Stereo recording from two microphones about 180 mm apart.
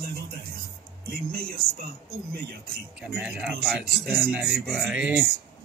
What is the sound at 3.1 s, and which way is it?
Speech, 5° right (ahead or behind).